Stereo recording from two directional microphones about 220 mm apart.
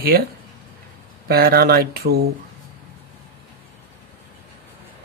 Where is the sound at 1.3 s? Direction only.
45° right (ahead or behind).